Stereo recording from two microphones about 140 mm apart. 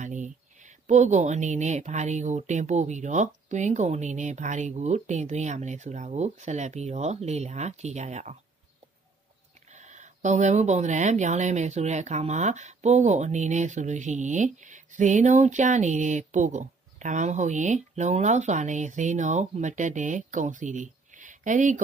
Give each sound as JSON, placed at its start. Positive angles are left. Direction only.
{"t": 0.0, "sound": "speech", "side_deg": -60}
{"t": 9.7, "sound": "speech", "side_deg": -60}